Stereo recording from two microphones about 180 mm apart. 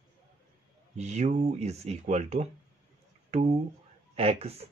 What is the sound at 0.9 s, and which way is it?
Speech, 40° right (ahead or behind).